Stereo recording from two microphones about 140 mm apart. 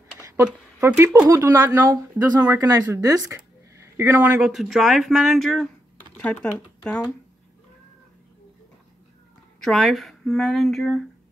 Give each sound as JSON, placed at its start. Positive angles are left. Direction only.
{"t": 0.4, "sound": "speech", "side_deg": -10}
{"t": 0.9, "sound": "speech", "side_deg": -25}
{"t": 2.4, "sound": "speech", "side_deg": -10}
{"t": 2.7, "sound": "speech", "side_deg": -25}
{"t": 3.3, "sound": "a sound", "side_deg": -20}
{"t": 4.4, "sound": "speech", "side_deg": -5}
{"t": 9.6, "sound": "speech", "side_deg": 0}